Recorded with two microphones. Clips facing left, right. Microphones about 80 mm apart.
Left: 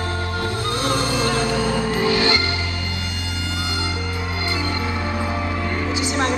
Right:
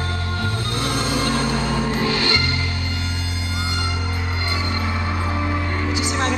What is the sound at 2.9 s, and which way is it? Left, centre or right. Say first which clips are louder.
Music: even; right.